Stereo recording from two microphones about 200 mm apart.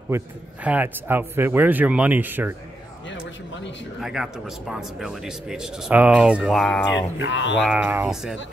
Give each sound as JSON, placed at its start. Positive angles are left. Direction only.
{"t": 0.7, "sound": "speech", "side_deg": -10}
{"t": 4.0, "sound": "speech", "side_deg": 0}
{"t": 7.2, "sound": "speech", "side_deg": 65}
{"t": 7.6, "sound": "speech", "side_deg": -10}